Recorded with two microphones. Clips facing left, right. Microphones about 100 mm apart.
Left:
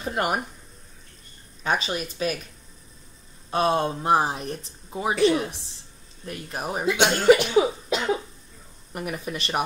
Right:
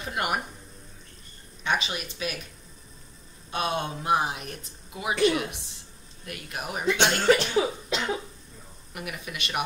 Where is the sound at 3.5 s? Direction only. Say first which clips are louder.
Left 6 dB; 35° left (ahead or behind).